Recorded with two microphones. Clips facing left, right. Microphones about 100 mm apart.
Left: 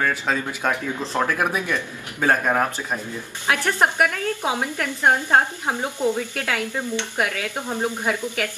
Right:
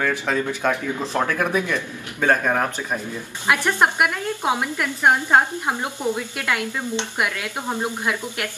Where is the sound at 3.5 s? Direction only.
15° right (ahead or behind).